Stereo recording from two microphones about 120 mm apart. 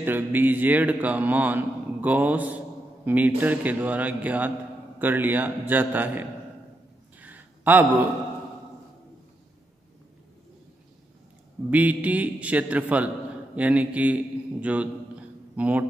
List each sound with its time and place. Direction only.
0.0 s a man's voice: 15° right (ahead or behind)
7.2 s a sound: 15° right (ahead or behind)
11.7 s a man's voice: 10° right (ahead or behind)